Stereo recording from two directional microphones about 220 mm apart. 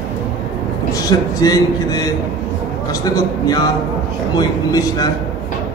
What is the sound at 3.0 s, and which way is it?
A man's voice, 15° left (ahead or behind).